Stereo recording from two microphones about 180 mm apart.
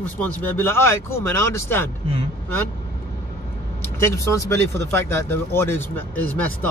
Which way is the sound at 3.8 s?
15° left (ahead or behind).